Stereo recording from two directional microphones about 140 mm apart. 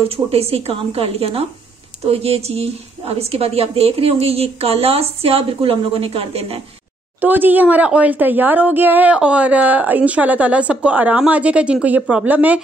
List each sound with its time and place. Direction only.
0.1 s a woman's voice: 45° right (ahead or behind)
7.2 s speech: 15° right (ahead or behind)